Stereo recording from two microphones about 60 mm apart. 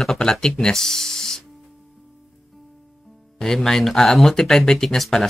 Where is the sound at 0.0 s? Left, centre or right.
Centre.